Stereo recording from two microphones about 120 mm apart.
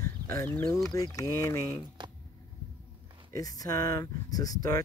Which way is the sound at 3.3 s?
30° left (ahead or behind).